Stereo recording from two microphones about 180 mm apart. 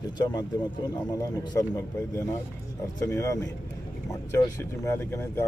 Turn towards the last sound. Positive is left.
turn(degrees=15)  # may be behind; listen again after turning